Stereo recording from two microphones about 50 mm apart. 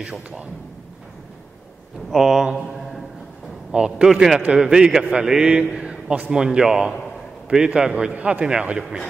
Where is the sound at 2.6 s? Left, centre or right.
Centre.